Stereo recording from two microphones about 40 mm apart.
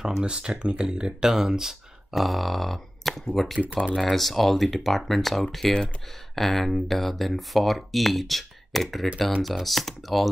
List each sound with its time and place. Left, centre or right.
0.0 s speech: centre
2.1 s speech: centre
3.6 s speech: right
3.9 s speech: centre